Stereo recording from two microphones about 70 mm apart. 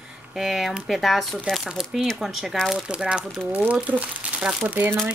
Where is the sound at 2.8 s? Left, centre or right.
Centre.